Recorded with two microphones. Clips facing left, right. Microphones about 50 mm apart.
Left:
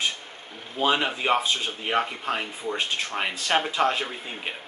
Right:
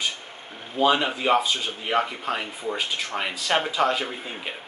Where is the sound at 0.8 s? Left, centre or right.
Centre.